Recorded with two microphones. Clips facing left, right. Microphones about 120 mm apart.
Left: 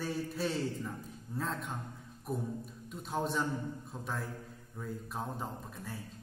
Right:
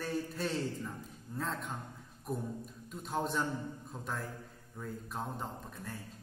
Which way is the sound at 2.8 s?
Centre (ahead or behind).